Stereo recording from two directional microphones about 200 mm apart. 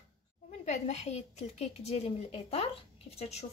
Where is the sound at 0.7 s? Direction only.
35° left (ahead or behind).